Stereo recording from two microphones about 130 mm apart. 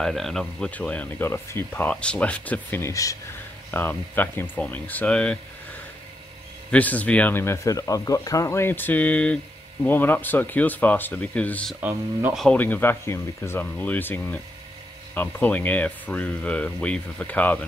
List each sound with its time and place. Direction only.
0.0 s speech: centre (ahead or behind)
6.7 s speech: 10° left (ahead or behind)
11.9 s speech: 15° right (ahead or behind)
12.5 s speech: 15° left (ahead or behind)